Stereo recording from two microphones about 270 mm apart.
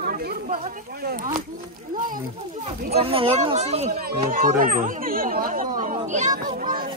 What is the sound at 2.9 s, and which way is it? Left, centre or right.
A child's voice, right.